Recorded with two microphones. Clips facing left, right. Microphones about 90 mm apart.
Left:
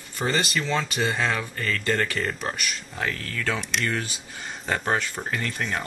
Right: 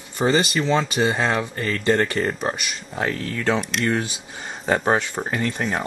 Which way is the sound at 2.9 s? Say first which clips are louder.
Right 9 dB; 10° right (ahead or behind).